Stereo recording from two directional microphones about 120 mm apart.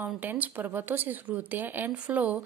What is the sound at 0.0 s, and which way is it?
A woman's voice, 15° right (ahead or behind).